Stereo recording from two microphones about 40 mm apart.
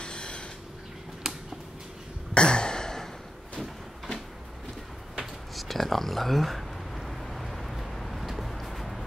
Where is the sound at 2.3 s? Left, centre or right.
Left.